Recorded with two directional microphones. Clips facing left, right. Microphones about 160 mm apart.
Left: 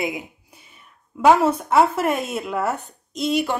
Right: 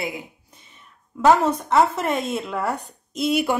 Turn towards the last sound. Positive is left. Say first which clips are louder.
# right 1 dB
turn(degrees=-10)  # may be behind; listen again after turning